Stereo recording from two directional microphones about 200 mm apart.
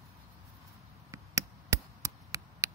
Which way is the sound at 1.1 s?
15° right (ahead or behind).